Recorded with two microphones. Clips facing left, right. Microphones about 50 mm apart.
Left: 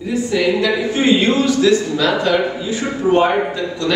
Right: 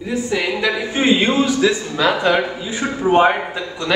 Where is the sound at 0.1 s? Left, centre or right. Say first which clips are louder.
Left 4 dB; centre.